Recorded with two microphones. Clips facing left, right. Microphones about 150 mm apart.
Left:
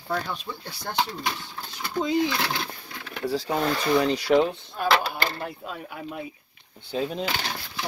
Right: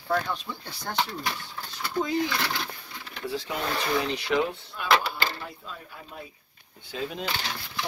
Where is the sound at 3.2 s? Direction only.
40° left (ahead or behind).